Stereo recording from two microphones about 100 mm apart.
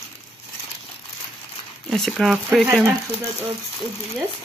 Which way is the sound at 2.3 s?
10° right (ahead or behind).